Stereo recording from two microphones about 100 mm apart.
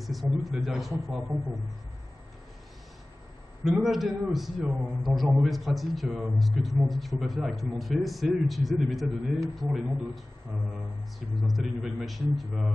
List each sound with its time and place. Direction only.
0.0 s a man's voice: centre (ahead or behind)
3.6 s a man's voice: centre (ahead or behind)
11.4 s a man's voice: centre (ahead or behind)